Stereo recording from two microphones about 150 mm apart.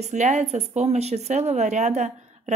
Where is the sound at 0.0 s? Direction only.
50° right (ahead or behind).